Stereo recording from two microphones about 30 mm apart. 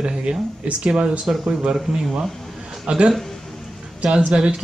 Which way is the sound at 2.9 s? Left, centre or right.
Right.